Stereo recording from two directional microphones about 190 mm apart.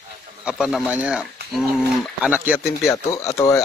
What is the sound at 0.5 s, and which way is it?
Speech, 5° right (ahead or behind).